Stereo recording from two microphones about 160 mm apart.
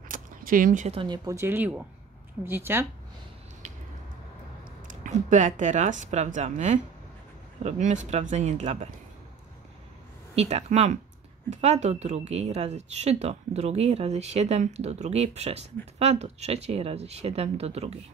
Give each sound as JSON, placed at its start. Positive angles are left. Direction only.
{"t": 0.1, "sound": "a sound", "side_deg": -60}
{"t": 1.0, "sound": "speech", "side_deg": -25}
{"t": 4.8, "sound": "speech", "side_deg": -50}
{"t": 10.3, "sound": "speech", "side_deg": -45}